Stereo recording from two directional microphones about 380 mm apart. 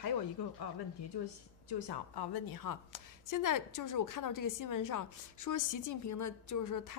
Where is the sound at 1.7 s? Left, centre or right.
Left.